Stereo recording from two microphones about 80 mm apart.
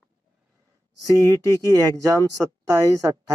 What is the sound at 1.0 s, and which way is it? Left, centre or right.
Speech, left.